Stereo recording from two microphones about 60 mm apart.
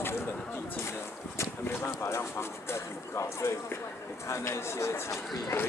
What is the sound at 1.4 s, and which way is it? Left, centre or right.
Speech, left.